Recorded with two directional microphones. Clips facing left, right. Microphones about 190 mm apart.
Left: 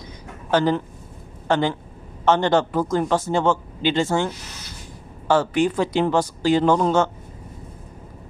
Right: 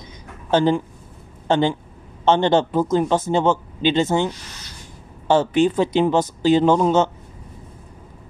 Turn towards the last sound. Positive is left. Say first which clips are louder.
# right 2 dB
turn(degrees=-20)  # may be behind; listen again after turning